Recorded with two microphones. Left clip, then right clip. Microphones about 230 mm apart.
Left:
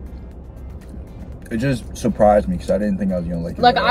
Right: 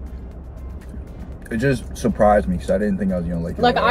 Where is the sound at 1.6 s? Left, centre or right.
Centre.